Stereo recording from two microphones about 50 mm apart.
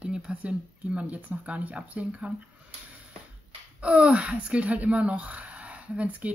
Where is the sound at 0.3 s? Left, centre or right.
Right.